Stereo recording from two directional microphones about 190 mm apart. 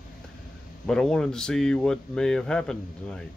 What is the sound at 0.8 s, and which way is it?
Speech, 5° left (ahead or behind).